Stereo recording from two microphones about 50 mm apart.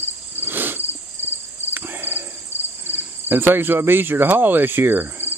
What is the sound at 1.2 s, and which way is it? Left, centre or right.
Cricket, right.